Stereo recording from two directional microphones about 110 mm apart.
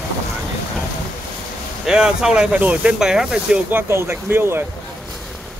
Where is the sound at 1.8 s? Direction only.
5° right (ahead or behind).